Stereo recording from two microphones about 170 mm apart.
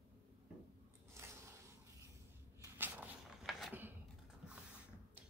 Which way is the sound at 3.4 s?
Centre (ahead or behind).